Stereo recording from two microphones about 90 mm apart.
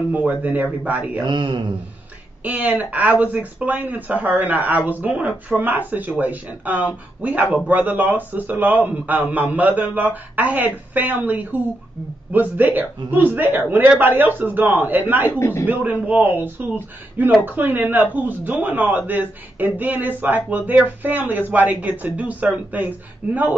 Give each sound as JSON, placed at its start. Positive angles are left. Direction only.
{"t": 0.1, "sound": "a man's voice", "side_deg": -20}
{"t": 1.2, "sound": "a man's voice", "side_deg": -60}
{"t": 2.4, "sound": "a man's voice", "side_deg": -20}
{"t": 15.3, "sound": "a man's voice", "side_deg": 30}
{"t": 15.6, "sound": "a man's voice", "side_deg": -20}